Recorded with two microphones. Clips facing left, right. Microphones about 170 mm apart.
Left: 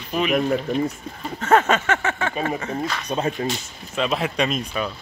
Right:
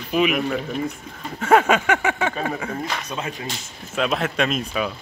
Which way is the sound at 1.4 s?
10° right (ahead or behind).